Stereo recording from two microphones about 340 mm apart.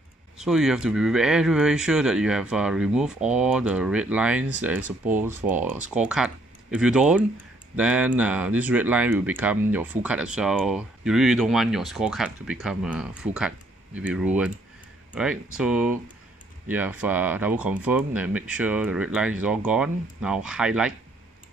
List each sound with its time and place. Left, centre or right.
0.4 s speech: centre